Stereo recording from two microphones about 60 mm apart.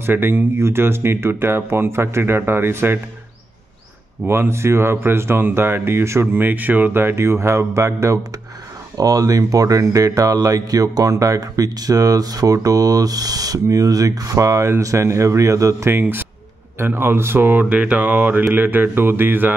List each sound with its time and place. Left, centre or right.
0.0 s speech: right
4.3 s speech: right
6.4 s speech: right
8.9 s speech: right
15.9 s speech: right
17.6 s speech: right